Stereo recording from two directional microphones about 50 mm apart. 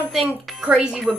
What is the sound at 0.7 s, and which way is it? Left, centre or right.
Speech, right.